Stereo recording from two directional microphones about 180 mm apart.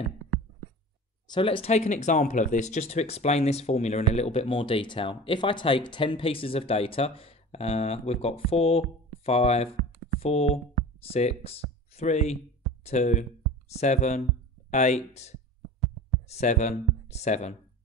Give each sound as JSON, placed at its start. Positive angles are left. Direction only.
{"t": 1.3, "sound": "speech", "side_deg": 30}